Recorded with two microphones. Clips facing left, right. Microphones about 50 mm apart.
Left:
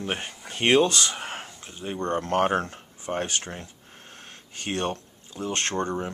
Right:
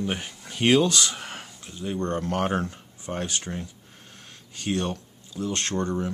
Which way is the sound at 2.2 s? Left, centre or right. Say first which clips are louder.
Left 3 dB; left.